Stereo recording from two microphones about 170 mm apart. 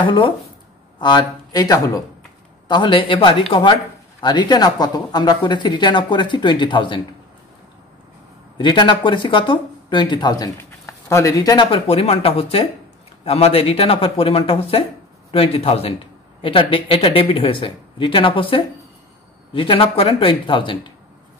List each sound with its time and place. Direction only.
0.0 s speech: 30° left (ahead or behind)
8.5 s speech: 30° left (ahead or behind)